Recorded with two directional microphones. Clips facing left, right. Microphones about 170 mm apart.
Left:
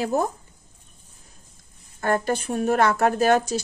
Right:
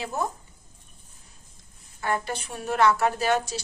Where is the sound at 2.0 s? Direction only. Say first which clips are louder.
Left 6 dB; 45° left (ahead or behind).